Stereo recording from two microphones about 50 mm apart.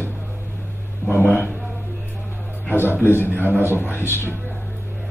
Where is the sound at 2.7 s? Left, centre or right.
Left.